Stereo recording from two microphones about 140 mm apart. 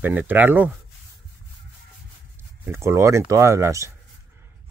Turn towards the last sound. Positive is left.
turn(degrees=-20)  # may be behind; listen again after turning